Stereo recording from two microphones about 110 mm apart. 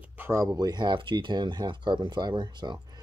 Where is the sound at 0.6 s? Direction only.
40° right (ahead or behind).